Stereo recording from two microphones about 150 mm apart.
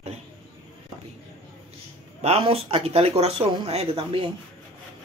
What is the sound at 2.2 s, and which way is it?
Speech, 45° right (ahead or behind).